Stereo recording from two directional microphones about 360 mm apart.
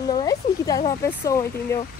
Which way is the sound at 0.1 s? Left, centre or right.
Centre.